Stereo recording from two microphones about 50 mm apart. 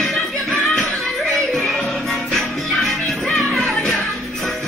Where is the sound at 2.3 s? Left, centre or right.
Centre.